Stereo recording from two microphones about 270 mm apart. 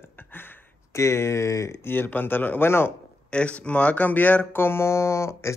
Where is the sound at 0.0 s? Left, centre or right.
Centre.